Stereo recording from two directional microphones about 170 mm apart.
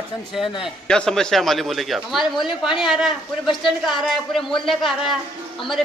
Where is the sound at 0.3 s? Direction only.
Centre (ahead or behind).